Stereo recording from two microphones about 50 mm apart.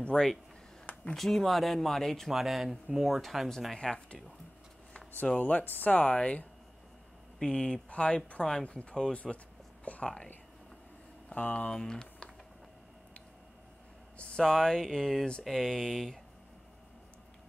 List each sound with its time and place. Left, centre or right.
0.0 s speech: centre
2.2 s speech: centre
3.7 s speech: centre
5.4 s speech: left; by 10.3 s centre
11.3 s speech: left
11.7 s speech: centre
14.1 s speech: centre